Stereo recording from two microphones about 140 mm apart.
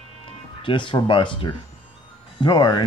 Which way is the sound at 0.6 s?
35° left (ahead or behind).